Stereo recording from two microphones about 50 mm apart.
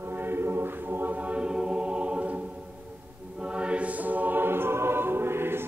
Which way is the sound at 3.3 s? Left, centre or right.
Right.